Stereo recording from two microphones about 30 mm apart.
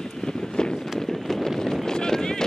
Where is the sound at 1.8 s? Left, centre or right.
Centre.